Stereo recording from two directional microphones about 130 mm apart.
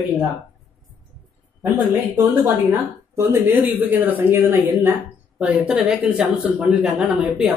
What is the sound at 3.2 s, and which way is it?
Speech, 15° right (ahead or behind).